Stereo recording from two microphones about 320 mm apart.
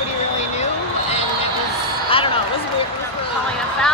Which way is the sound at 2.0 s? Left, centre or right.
Centre.